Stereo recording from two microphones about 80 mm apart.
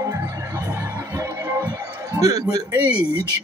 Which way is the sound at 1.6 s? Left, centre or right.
Right.